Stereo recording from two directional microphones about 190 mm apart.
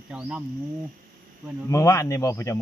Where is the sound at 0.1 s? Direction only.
5° right (ahead or behind).